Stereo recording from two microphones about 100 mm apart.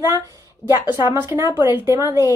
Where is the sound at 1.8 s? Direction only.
30° right (ahead or behind).